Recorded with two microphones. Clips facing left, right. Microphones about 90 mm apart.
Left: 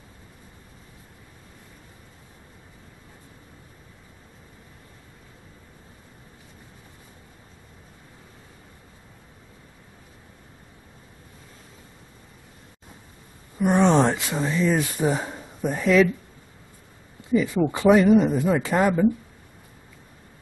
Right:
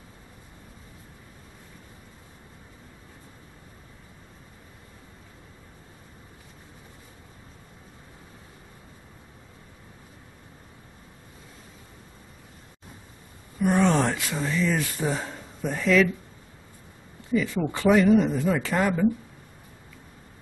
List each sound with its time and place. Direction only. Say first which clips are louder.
13.6 s speech: left 3 dB; 20° left (ahead or behind)
17.3 s speech: left 4 dB; 15° left (ahead or behind)